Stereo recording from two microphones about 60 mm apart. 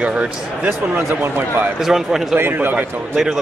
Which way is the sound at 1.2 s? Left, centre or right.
Right.